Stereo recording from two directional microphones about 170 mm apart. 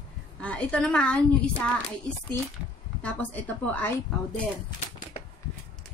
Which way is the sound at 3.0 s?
10° left (ahead or behind).